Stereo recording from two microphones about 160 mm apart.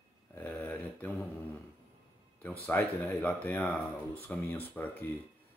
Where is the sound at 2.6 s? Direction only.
10° left (ahead or behind).